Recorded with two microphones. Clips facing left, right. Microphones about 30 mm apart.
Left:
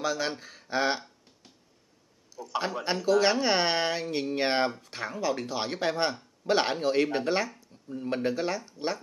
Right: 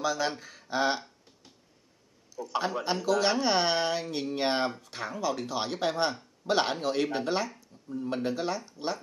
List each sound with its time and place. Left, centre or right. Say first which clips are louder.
0.0 s speech: right 1 dB; centre
0.4 s a sound: even; centre
2.3 s a man's voice: right 1 dB; centre
3.1 s speech: left 3 dB; centre
8.3 s speech: left 2 dB; centre